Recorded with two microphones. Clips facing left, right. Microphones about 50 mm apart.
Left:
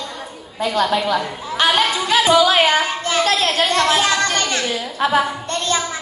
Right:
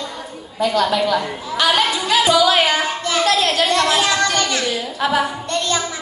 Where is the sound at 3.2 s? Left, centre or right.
Left.